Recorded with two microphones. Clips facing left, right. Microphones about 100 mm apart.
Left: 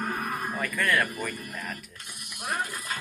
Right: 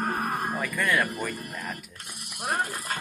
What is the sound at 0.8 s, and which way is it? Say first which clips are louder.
Speech: even; 5° right (ahead or behind).